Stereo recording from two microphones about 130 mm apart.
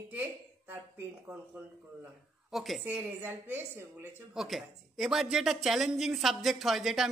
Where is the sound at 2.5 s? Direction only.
Centre (ahead or behind).